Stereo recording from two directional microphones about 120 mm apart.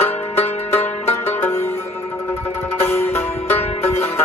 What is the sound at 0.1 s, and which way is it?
Music, 60° left (ahead or behind).